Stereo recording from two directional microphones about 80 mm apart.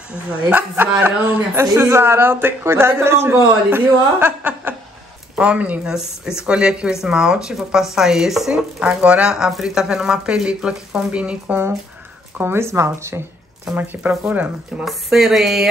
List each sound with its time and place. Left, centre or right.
0.1 s a man's voice: right
12.4 s speech: right
13.7 s a man's voice: right
14.9 s speech: centre